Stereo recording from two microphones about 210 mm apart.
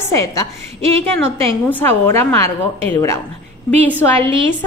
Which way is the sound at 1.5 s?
10° left (ahead or behind).